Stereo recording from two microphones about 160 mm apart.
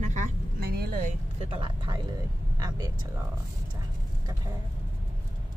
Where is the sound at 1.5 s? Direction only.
30° right (ahead or behind).